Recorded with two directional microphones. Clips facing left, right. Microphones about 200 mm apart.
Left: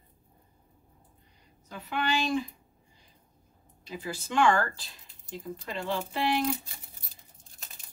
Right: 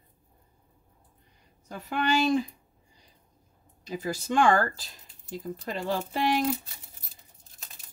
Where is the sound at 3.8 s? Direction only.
40° right (ahead or behind).